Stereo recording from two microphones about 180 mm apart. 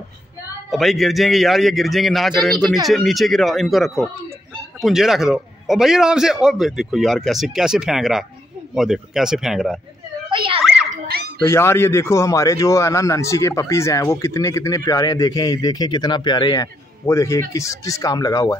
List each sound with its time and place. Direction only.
0.7 s a man's voice: centre (ahead or behind)
10.3 s children playing: 30° right (ahead or behind)
11.1 s dog: 60° right (ahead or behind)
11.4 s speech: 15° left (ahead or behind)